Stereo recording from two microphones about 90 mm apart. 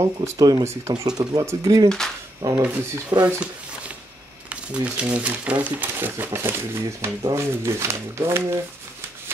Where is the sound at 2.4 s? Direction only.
35° right (ahead or behind).